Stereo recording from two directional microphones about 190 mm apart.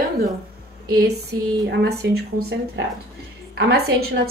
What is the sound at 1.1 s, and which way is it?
A woman's voice, 60° right (ahead or behind).